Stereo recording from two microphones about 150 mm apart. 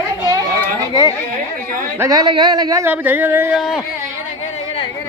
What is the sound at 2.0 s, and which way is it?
Speech, 25° right (ahead or behind).